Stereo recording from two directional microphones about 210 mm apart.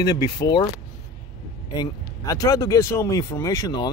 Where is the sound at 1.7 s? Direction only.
15° left (ahead or behind).